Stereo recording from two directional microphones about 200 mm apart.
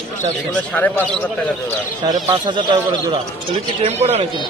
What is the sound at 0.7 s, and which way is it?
Speech, 5° left (ahead or behind).